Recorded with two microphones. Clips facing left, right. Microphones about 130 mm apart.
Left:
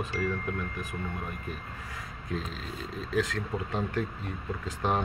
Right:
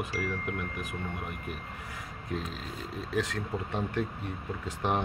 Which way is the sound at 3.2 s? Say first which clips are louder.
Left 2 dB; 20° right (ahead or behind).